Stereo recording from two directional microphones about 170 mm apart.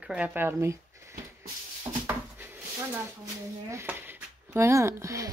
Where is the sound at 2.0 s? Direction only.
10° right (ahead or behind).